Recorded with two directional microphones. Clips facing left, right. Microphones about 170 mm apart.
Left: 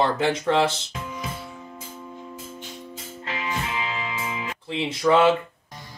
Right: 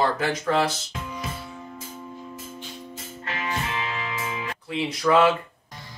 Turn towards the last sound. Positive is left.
turn(degrees=25)  # may be behind; listen again after turning